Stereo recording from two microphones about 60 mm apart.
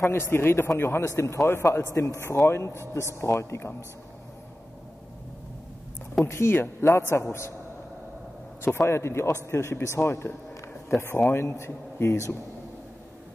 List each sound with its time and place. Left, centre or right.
0.0 s a man's voice: left
2.3 s a man's voice: left
6.2 s a man's voice: left
8.6 s a man's voice: left